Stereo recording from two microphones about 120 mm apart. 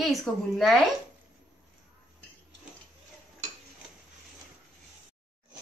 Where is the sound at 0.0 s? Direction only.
Centre (ahead or behind).